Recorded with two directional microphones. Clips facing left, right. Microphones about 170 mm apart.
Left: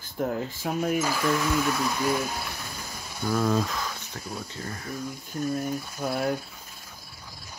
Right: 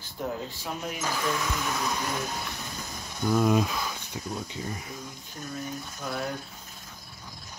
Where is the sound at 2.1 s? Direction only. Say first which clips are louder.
Left 5 dB; 10° left (ahead or behind).